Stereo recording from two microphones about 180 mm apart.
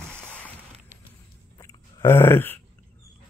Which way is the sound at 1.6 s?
15° left (ahead or behind).